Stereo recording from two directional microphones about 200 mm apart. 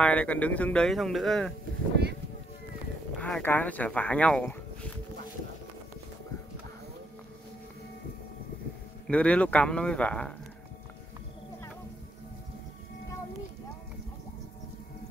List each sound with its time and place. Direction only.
0.0 s speech: 5° left (ahead or behind)
3.2 s speech: 5° left (ahead or behind)
9.0 s speech: 5° left (ahead or behind)